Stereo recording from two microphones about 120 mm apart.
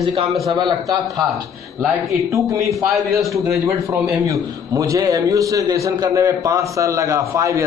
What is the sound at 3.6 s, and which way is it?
A man's voice, 25° right (ahead or behind).